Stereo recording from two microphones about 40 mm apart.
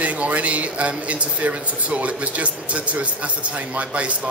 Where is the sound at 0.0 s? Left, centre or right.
Right.